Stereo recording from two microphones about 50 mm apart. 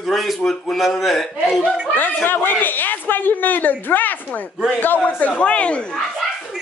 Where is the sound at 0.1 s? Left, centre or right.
Centre.